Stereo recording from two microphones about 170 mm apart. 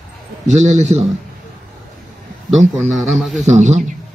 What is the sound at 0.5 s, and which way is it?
Speech, 45° right (ahead or behind).